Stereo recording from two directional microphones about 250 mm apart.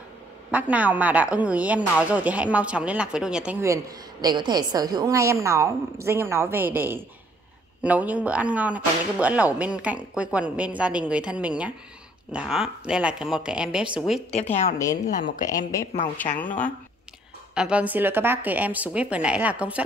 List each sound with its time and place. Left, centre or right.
0.5 s a woman's voice: centre
14.3 s a woman's voice: left
15.4 s a woman's voice: centre
17.6 s a woman's voice: centre